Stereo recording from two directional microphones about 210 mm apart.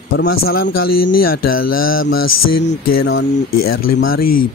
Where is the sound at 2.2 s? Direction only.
55° left (ahead or behind).